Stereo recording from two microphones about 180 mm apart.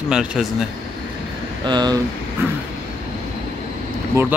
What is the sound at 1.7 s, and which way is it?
Speech, 25° right (ahead or behind).